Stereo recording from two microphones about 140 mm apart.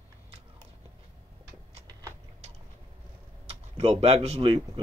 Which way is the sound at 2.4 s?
50° right (ahead or behind).